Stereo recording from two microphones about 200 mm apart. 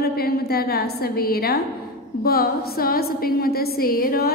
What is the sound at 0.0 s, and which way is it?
A woman's voice, 50° left (ahead or behind).